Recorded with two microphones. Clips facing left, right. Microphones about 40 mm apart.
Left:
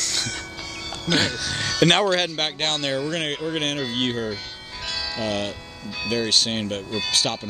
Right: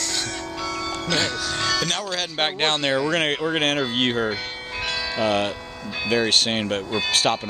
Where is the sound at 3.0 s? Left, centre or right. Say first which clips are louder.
Right 4 dB; right.